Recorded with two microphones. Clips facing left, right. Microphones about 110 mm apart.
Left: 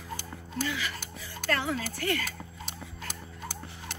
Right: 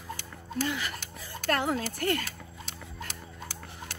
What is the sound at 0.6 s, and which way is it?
Speech, 45° right (ahead or behind).